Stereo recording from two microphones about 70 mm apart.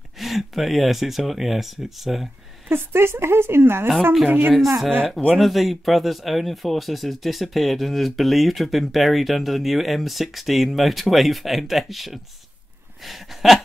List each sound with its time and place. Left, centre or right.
0.2 s speech: centre
2.7 s a woman's voice: right
4.6 s speech: centre